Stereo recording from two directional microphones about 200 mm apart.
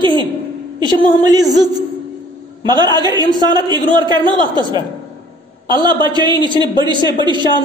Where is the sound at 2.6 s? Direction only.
20° right (ahead or behind).